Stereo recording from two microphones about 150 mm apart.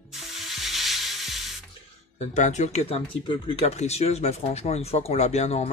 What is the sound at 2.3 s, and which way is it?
Speech, 50° left (ahead or behind).